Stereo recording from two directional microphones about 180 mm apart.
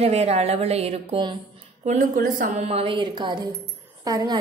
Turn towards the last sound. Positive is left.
turn(degrees=-20)  # may be behind; listen again after turning